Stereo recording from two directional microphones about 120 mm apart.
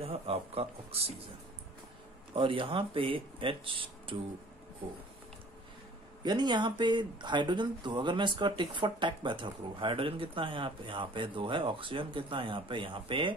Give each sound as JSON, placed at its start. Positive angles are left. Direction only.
{"t": 0.0, "sound": "speech", "side_deg": -55}
{"t": 2.3, "sound": "speech", "side_deg": -50}
{"t": 6.2, "sound": "speech", "side_deg": -40}